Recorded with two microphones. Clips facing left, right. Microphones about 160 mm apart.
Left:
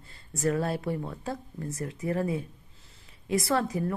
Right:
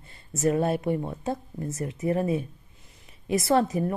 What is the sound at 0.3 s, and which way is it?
Speech, 20° right (ahead or behind).